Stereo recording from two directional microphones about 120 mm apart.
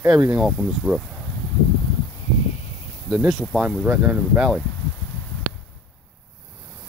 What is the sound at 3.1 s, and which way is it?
Speech, centre (ahead or behind).